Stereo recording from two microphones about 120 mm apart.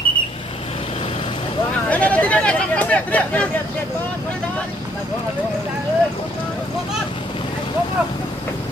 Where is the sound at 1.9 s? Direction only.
10° left (ahead or behind).